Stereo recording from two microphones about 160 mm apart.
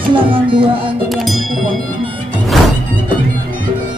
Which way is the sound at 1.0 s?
Centre (ahead or behind).